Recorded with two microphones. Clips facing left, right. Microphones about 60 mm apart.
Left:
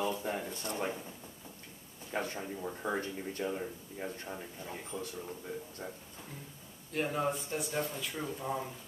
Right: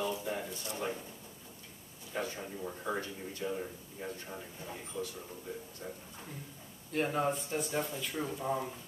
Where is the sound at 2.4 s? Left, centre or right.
Centre.